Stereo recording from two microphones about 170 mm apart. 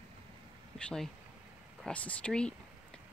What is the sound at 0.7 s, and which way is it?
Speech, 5° left (ahead or behind).